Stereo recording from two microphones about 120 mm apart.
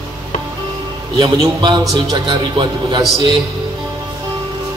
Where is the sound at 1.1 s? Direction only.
35° right (ahead or behind).